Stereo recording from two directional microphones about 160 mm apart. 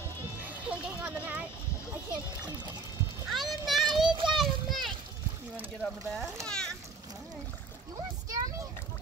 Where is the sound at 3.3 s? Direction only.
Centre (ahead or behind).